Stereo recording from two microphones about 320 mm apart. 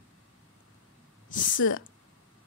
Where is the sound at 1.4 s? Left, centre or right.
Left.